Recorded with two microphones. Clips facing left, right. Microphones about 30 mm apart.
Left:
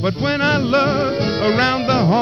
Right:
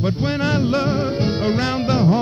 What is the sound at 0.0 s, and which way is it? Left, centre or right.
Music, left.